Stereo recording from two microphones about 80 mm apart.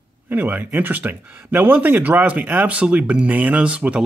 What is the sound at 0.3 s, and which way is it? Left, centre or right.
Speech, right.